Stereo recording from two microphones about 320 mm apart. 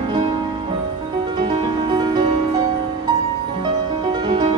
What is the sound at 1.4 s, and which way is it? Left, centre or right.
Music, centre.